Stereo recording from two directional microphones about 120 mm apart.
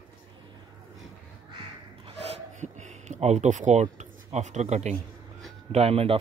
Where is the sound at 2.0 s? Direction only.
70° right (ahead or behind); by 3.8 s 85° right.